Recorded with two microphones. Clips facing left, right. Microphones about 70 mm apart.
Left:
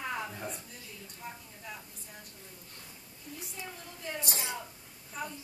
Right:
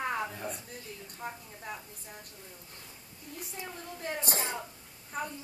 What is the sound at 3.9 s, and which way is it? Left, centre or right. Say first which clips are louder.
A woman's voice: right 4 dB; right.